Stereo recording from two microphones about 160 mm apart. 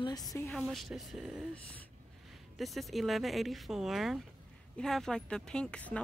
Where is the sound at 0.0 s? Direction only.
25° left (ahead or behind).